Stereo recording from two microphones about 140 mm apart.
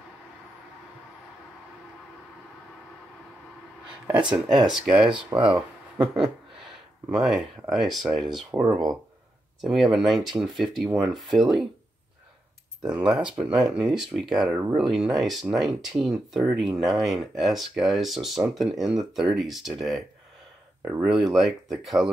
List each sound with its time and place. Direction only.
4.3 s speech: 30° right (ahead or behind)
4.8 s speech: 5° right (ahead or behind)
7.1 s speech: centre (ahead or behind)
9.6 s speech: centre (ahead or behind)
12.8 s speech: 5° right (ahead or behind)
14.5 s speech: 15° right (ahead or behind)
14.8 s speech: centre (ahead or behind)
20.8 s speech: 20° right (ahead or behind)
21.1 s speech: centre (ahead or behind)